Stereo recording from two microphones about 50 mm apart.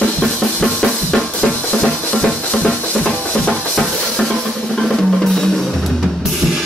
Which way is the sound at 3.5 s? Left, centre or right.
Centre.